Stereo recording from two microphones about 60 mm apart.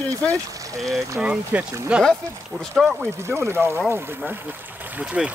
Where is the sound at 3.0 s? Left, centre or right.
Right.